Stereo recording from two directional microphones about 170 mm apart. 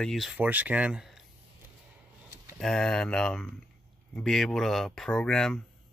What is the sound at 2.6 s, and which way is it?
Speech, 5° left (ahead or behind).